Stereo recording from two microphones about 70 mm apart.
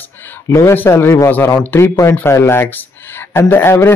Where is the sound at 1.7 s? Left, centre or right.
Left.